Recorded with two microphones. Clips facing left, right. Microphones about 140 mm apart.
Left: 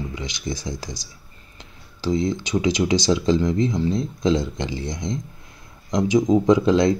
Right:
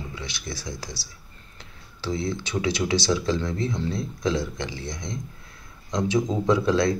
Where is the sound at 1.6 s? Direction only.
20° left (ahead or behind).